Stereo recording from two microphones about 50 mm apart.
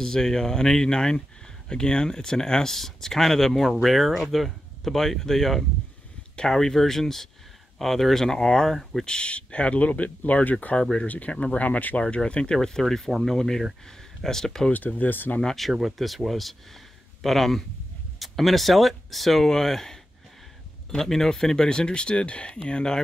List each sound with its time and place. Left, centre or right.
0.0 s speech: centre
9.0 s speech: centre
14.7 s speech: left
15.4 s speech: centre